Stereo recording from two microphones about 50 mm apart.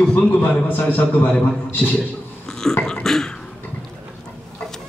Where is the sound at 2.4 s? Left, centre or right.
Centre.